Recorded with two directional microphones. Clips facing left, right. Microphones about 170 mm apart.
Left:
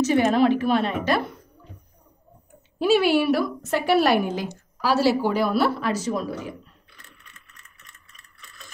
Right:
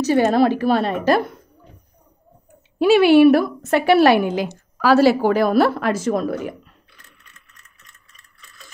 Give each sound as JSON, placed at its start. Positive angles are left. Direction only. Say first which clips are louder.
{"t": 0.0, "sound": "a woman's voice", "louder": "right 3 dB", "side_deg": -35}
{"t": 2.8, "sound": "a woman's voice", "louder": "right 8 dB", "side_deg": -70}